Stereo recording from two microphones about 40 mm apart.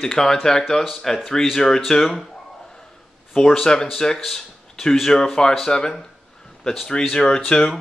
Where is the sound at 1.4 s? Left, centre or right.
Centre.